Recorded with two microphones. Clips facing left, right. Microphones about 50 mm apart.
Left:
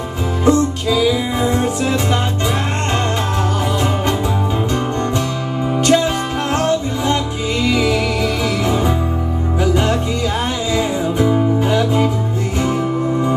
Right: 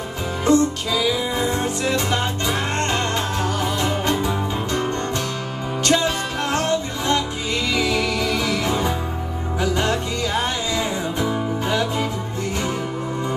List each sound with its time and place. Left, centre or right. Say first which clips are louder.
0.5 s music: left 3 dB; centre
5.9 s music: left 4 dB; centre